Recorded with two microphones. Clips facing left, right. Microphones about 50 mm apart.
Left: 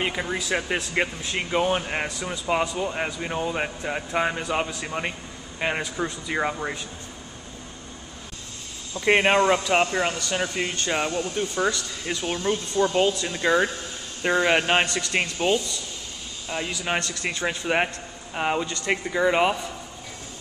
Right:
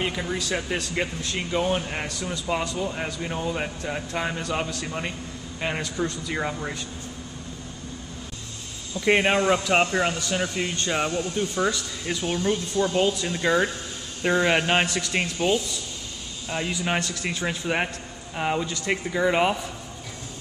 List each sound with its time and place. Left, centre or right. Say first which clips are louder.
0.0 s speech: left 1 dB; centre
9.0 s speech: left 2 dB; centre
10.3 s speech: even; centre
10.8 s speech: even; centre
12.7 s speech: left 3 dB; left
13.3 s speech: left 1 dB; centre
14.9 s speech: left 1 dB; centre